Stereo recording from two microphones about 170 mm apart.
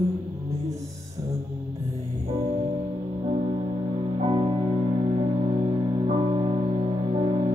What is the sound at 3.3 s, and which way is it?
Music, 35° right (ahead or behind).